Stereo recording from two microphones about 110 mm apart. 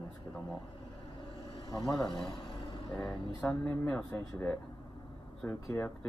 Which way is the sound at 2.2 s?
50° left (ahead or behind).